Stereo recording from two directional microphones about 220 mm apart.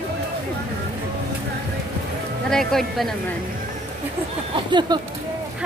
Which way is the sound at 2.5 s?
Centre (ahead or behind).